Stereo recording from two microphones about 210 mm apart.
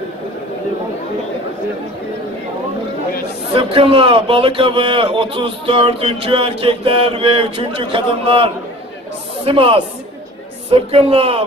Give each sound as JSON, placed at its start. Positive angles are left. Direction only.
{"t": 3.5, "sound": "a man's voice", "side_deg": -25}